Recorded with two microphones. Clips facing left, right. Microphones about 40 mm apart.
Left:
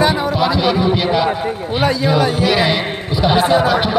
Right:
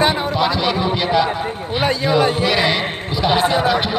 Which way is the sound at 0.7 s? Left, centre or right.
Centre.